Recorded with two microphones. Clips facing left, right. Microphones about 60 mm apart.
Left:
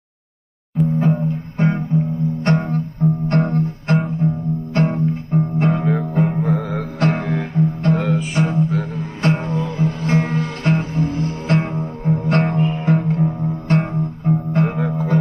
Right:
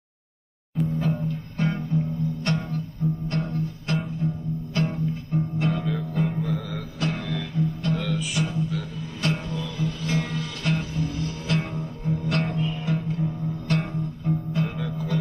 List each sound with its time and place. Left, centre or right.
0.8 s music: left
4.2 s music: left
7.2 s music: left